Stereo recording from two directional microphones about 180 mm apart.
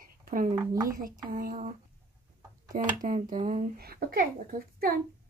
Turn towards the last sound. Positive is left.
turn(degrees=-55)  # may be behind; listen again after turning